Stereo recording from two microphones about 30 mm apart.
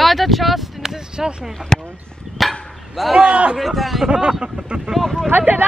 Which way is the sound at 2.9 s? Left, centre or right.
Centre.